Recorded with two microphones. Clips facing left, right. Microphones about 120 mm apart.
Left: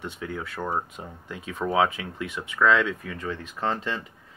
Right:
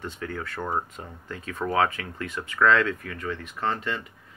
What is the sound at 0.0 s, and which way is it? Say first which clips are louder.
Speech: even; 10° left (ahead or behind).